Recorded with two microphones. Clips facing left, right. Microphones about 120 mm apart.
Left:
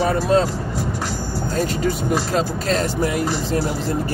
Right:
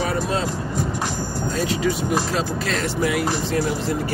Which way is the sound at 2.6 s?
40° left (ahead or behind).